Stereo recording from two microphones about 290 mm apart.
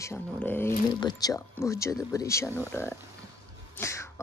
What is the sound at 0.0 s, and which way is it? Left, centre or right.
Speech, centre.